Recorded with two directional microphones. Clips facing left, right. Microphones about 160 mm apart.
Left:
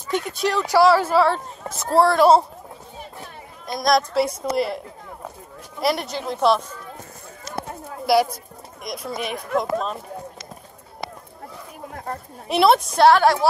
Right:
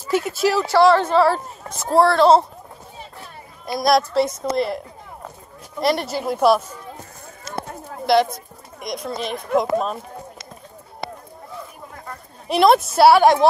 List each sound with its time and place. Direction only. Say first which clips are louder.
0.1 s speech: right 4 dB; 5° right (ahead or behind)
0.7 s speech: even; 10° left (ahead or behind)
3.6 s speech: right 2 dB; 5° right (ahead or behind)
8.1 s speech: right 1 dB; 10° left (ahead or behind)
9.6 s speech: right 3 dB; 5° right (ahead or behind)
11.9 s a sound: left 5 dB; 50° left (ahead or behind)
12.4 s speech: right 2 dB; centre (ahead or behind); by 13.5 s 20° right (ahead or behind)